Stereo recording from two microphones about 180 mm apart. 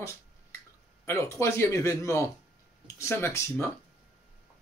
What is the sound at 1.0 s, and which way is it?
Speech, 15° left (ahead or behind).